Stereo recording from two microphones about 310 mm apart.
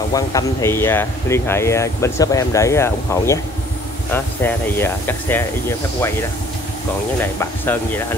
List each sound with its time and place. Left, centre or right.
0.1 s speech: centre
7.3 s speech: centre